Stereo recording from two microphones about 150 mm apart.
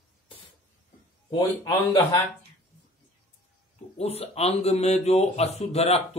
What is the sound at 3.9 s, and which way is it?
Speech, 45° left (ahead or behind).